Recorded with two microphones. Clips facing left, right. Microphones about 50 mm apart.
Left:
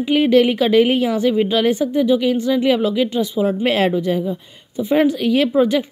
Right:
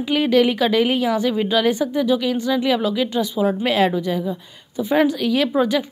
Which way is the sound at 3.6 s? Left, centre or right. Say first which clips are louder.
Left 2 dB; left.